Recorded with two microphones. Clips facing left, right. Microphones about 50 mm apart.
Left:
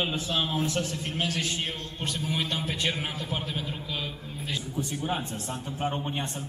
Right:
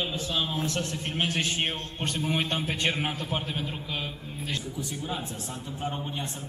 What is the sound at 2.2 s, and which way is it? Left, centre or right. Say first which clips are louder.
Speech: right 3 dB; right.